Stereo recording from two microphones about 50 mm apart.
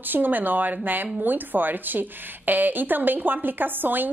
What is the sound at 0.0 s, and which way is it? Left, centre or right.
A woman's voice, right.